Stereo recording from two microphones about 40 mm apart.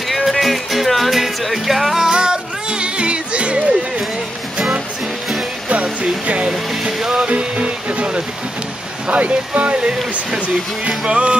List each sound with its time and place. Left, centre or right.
0.1 s music: centre
2.0 s music: centre
5.7 s music: right
6.8 s music: centre
9.1 s speech: right
10.9 s music: right